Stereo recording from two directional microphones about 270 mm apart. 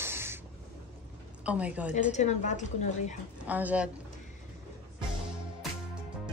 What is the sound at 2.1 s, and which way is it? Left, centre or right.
A woman's voice, left.